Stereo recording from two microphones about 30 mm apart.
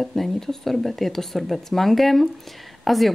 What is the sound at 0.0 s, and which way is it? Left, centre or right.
Speech, centre.